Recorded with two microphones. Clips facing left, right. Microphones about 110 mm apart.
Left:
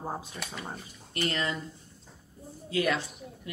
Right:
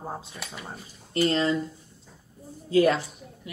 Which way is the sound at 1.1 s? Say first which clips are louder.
Right 8 dB; 30° right (ahead or behind).